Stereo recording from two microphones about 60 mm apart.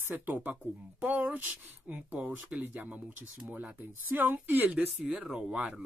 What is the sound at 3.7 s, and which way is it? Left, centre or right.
Speech, right.